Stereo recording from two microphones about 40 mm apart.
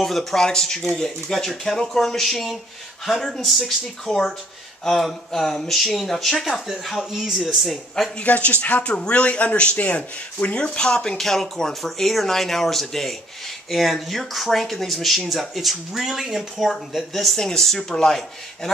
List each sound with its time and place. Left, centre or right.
0.0 s speech: centre
8.2 s a man's voice: left
10.9 s speech: centre